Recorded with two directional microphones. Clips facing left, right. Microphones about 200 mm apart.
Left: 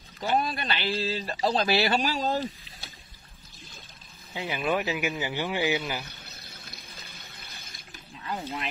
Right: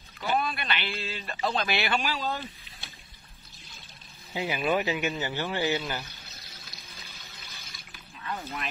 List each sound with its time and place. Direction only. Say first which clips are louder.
0.2 s a man's voice: left 2 dB; 35° left (ahead or behind)
4.3 s a man's voice: right 1 dB; 5° right (ahead or behind); by 6.0 s 10° left (ahead or behind)
6.0 s water: left 3 dB; 60° left (ahead or behind)